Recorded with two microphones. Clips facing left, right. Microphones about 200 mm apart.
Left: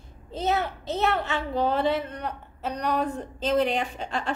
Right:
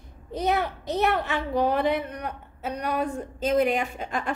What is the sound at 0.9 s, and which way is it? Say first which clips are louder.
A child's voice: right 1 dB; 15° right (ahead or behind).